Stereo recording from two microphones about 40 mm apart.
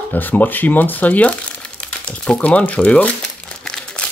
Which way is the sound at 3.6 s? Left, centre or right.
Centre.